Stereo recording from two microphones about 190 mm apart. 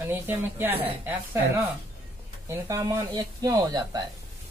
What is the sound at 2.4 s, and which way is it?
Speech, 15° right (ahead or behind).